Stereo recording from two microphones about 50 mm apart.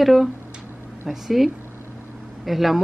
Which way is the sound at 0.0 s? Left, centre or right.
Centre.